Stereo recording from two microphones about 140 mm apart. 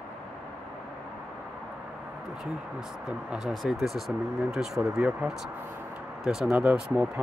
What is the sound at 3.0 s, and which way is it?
Speech, 5° right (ahead or behind).